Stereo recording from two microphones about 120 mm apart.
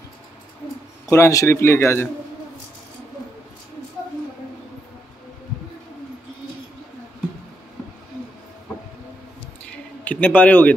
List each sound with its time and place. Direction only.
1.1 s speech: 25° left (ahead or behind)
10.0 s a man's voice: 15° left (ahead or behind)